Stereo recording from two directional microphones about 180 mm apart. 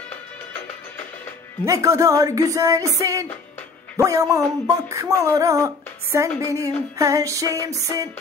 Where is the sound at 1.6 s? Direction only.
15° right (ahead or behind).